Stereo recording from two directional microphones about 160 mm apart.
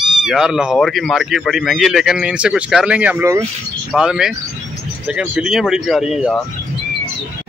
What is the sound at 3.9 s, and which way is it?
Speech, 5° right (ahead or behind).